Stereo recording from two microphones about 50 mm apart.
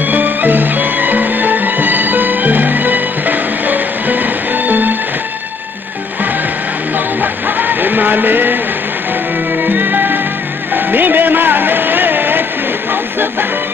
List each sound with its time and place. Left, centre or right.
0.0 s music: right
7.2 s music: right
9.6 s music: right
12.9 s train: right